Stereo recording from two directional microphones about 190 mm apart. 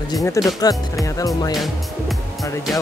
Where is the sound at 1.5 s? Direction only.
Centre (ahead or behind).